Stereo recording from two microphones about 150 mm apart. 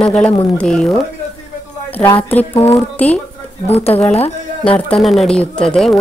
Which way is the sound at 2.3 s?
15° left (ahead or behind).